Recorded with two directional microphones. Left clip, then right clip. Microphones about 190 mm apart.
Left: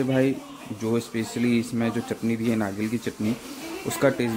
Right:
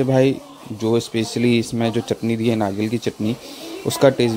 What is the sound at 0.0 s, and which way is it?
Speech, 35° right (ahead or behind).